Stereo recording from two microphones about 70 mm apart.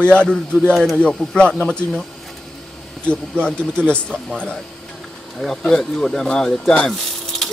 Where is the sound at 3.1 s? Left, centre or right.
Centre.